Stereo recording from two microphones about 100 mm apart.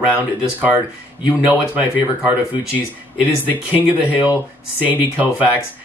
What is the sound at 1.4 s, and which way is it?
Speech, 15° right (ahead or behind).